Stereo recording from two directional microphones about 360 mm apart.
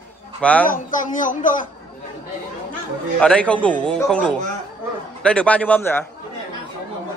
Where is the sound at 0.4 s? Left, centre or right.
Centre.